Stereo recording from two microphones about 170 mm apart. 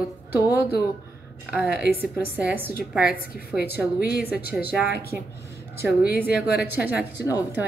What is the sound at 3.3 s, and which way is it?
A woman's voice, 70° left (ahead or behind).